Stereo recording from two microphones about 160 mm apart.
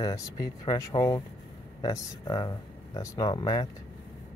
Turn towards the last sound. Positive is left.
turn(degrees=25)  # may be behind; listen again after turning